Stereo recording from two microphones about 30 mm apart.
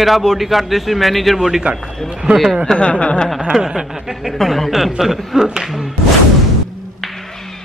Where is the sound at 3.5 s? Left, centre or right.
Centre.